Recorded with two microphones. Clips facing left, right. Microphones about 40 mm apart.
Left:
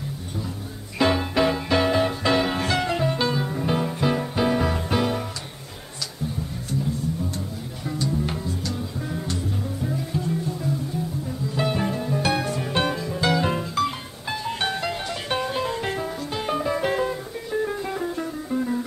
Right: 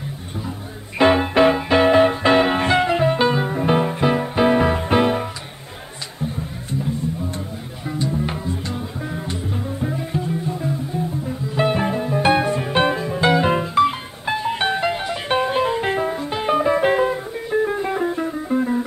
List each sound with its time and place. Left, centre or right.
0.9 s music: right
7.9 s music: right